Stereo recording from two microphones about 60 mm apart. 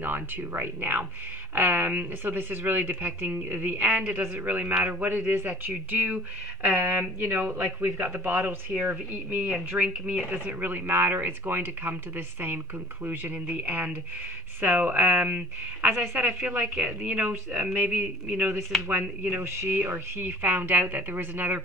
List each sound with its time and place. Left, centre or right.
0.0 s speech: right
19.4 s speech: right
19.8 s speech: right